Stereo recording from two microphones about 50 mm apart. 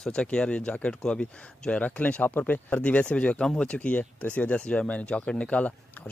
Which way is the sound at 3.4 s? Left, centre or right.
Centre.